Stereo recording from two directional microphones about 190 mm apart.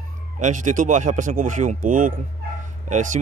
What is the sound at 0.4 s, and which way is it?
Speech, 40° right (ahead or behind).